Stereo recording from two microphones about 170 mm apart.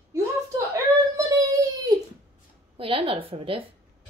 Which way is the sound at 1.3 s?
20° right (ahead or behind).